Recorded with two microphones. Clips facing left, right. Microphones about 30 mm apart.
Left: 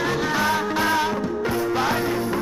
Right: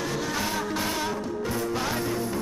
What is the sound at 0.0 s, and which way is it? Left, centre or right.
Music, left.